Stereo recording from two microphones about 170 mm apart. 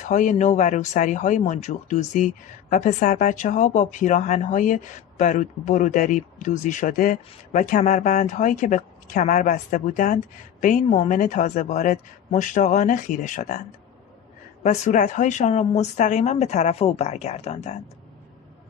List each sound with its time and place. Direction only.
0.0 s speech: 45° left (ahead or behind)
14.6 s speech: 45° left (ahead or behind)